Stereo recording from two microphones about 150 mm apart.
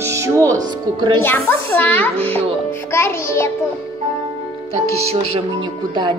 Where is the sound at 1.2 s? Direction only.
15° left (ahead or behind).